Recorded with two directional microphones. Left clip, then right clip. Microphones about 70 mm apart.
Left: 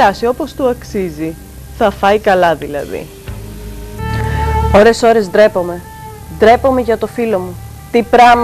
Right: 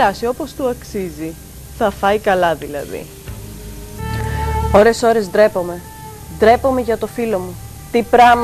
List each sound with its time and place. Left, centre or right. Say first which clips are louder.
0.0 s speech: left 5 dB; right
3.9 s music: left 5 dB; right
6.3 s a woman's voice: left 4 dB; right